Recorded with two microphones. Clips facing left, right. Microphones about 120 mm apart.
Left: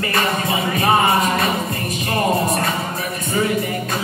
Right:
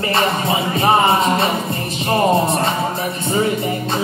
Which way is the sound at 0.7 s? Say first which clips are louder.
Right 2 dB; 25° right (ahead or behind).